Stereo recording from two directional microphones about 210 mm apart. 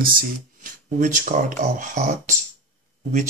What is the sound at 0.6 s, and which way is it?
Speech, 40° right (ahead or behind).